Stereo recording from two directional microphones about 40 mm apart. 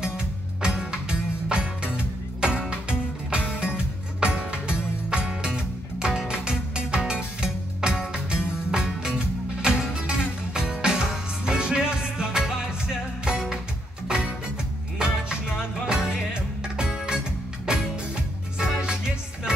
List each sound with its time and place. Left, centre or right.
0.0 s music: right